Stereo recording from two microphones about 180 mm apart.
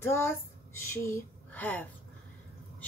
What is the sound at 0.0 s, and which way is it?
A woman's voice, 15° left (ahead or behind).